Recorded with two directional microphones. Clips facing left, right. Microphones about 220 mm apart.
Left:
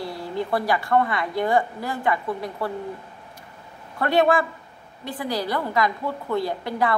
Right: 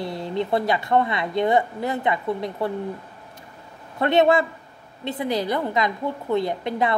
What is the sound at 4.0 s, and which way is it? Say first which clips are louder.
A woman's voice: right 2 dB; 20° right (ahead or behind).